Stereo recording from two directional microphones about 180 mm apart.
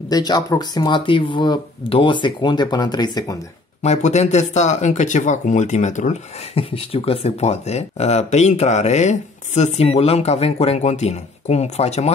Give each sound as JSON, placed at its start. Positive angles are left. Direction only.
{"t": 0.1, "sound": "speech", "side_deg": 20}
{"t": 3.8, "sound": "speech", "side_deg": 40}